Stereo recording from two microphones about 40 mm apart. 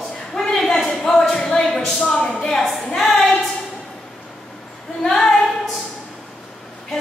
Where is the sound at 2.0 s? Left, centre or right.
Left.